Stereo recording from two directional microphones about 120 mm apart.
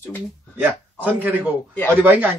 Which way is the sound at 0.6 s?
15° right (ahead or behind).